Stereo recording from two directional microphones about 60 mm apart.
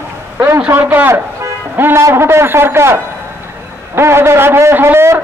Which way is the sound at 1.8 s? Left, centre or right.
Right.